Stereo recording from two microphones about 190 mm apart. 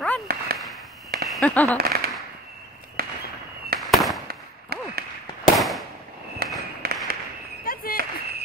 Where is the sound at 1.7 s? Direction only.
55° right (ahead or behind).